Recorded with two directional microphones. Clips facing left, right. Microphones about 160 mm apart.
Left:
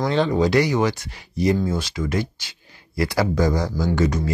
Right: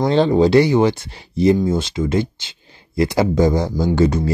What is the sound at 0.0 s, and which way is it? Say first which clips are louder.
Speech: right 5 dB; 30° right (ahead or behind).